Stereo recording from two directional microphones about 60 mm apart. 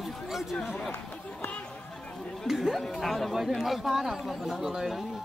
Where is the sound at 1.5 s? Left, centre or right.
Centre.